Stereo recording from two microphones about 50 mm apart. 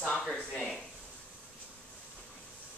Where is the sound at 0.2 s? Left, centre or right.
Centre.